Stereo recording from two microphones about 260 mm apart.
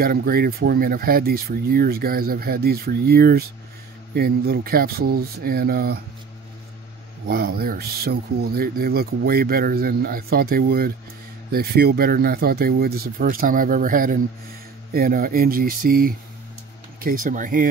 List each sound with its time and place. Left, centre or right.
0.0 s speech: right
7.2 s speech: right